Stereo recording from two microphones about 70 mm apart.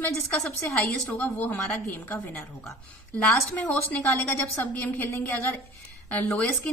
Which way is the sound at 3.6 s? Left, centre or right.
Centre.